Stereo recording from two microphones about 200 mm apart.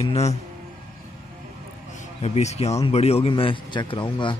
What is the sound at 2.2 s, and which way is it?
A man's voice, 30° left (ahead or behind).